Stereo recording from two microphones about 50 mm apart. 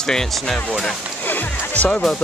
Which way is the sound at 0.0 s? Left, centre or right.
Centre.